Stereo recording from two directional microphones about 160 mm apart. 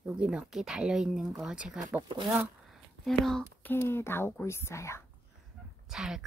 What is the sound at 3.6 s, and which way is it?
Speech, 15° left (ahead or behind).